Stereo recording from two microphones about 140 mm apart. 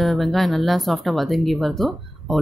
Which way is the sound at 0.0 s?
Centre (ahead or behind).